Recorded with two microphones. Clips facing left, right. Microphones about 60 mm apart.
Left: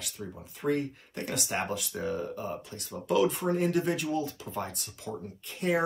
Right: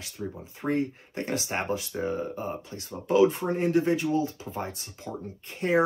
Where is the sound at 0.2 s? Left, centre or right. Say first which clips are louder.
Right 6 dB; centre.